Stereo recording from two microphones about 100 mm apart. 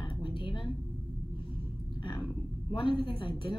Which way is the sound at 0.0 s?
55° left (ahead or behind).